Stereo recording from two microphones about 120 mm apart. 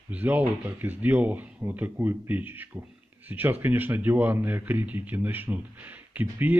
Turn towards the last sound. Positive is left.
turn(degrees=-15)  # may be behind; listen again after turning